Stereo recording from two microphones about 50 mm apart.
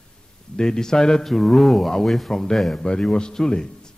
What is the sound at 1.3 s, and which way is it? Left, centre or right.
A man's voice, centre.